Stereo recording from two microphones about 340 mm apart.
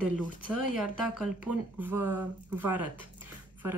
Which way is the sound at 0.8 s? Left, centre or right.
Centre.